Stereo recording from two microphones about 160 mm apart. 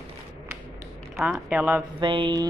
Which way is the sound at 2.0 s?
30° right (ahead or behind).